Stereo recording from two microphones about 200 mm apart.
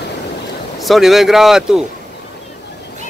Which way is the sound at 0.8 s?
Centre (ahead or behind).